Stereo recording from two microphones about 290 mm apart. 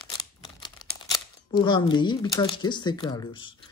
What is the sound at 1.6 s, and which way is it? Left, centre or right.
Speech, centre.